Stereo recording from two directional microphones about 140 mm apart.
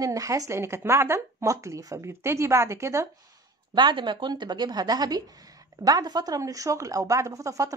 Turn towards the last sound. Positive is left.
turn(degrees=-25)  # may be behind; listen again after turning